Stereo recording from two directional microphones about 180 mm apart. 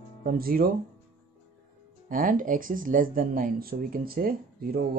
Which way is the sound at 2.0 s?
50° right (ahead or behind).